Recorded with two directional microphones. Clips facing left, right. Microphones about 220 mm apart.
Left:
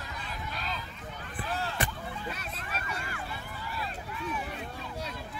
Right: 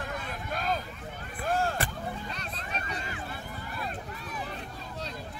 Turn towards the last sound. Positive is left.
turn(degrees=-35)  # may be behind; listen again after turning